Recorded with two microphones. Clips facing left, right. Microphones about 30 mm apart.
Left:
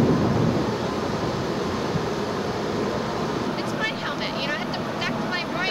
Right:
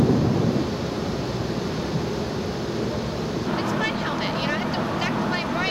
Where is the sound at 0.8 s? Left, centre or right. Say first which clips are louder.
Left 2 dB; centre.